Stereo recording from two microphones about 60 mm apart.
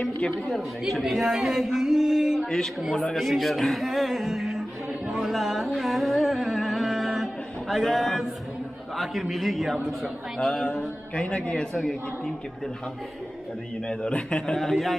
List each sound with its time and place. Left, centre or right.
0.0 s a man's voice: centre
0.6 s speech: centre
3.1 s speech: centre
5.8 s a sound: centre
8.9 s a man's voice: centre
13.8 s a man's voice: centre